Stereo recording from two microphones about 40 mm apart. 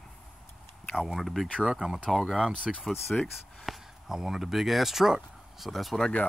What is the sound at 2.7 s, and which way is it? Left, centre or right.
Speech, centre.